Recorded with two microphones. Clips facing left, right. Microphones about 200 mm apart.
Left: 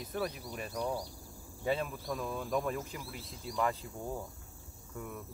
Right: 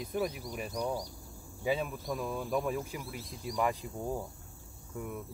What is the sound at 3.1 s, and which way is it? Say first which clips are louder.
Cricket: right 2 dB; 15° right (ahead or behind).